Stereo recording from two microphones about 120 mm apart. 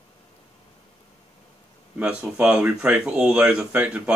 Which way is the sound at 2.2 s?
5° right (ahead or behind).